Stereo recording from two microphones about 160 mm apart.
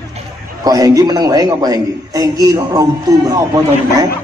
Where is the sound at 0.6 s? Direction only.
25° right (ahead or behind).